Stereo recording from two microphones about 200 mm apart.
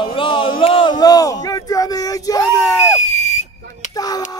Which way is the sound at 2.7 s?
35° left (ahead or behind).